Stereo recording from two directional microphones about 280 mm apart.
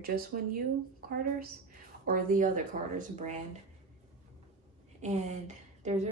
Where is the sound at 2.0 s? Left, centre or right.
Right.